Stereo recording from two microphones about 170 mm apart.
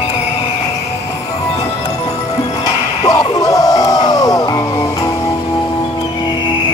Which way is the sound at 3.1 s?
20° left (ahead or behind).